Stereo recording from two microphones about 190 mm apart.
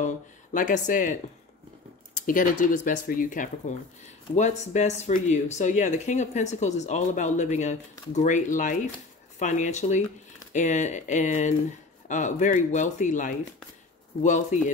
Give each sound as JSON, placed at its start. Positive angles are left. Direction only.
{"t": 0.0, "sound": "speech", "side_deg": 40}
{"t": 2.1, "sound": "speech", "side_deg": 45}